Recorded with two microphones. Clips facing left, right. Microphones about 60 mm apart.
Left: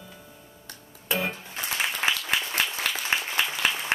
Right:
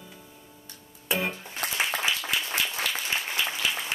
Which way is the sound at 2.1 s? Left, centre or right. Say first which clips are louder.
Left 2 dB; left.